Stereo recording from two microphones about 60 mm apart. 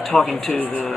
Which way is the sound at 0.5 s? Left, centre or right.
Left.